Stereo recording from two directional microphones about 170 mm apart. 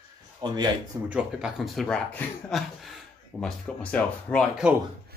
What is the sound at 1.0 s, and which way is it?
Speech, 5° right (ahead or behind).